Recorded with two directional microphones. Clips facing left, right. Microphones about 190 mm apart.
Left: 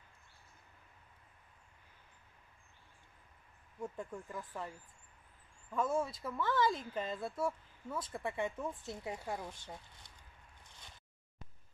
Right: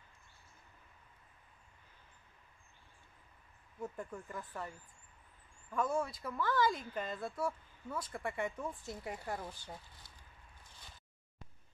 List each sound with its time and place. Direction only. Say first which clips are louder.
3.8 s speech: even; centre (ahead or behind)
6.8 s speech: left 1 dB; 25° left (ahead or behind)
7.1 s speech: left 1 dB; centre (ahead or behind)
8.1 s speech: left 1 dB; 20° left (ahead or behind)
8.4 s speech: left 2 dB; centre (ahead or behind)
8.8 s speech: left 1 dB; 20° left (ahead or behind)
9.2 s speech: even; centre (ahead or behind)